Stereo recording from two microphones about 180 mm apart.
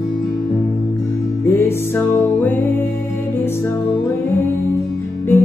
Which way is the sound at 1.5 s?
15° left (ahead or behind).